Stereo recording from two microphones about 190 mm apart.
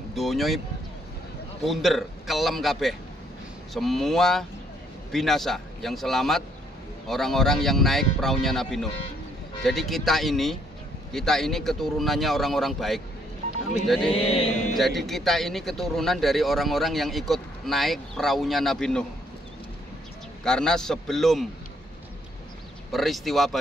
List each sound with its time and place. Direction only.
0.1 s speech: centre (ahead or behind)
1.6 s speech: centre (ahead or behind)
14.0 s mantra: 30° left (ahead or behind)
14.7 s speech: centre (ahead or behind)
20.4 s speech: 5° left (ahead or behind)
22.8 s speech: centre (ahead or behind)